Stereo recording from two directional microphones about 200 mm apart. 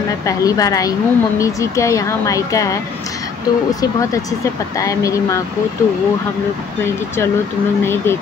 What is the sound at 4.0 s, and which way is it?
Speech, 15° left (ahead or behind).